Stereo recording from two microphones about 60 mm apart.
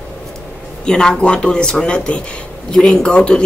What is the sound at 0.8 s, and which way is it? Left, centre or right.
A man's voice, centre.